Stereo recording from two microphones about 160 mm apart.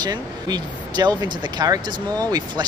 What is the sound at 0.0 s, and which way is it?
Speech, 25° right (ahead or behind).